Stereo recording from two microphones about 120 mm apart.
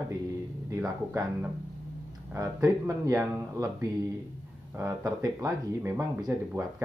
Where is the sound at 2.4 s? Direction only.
25° right (ahead or behind).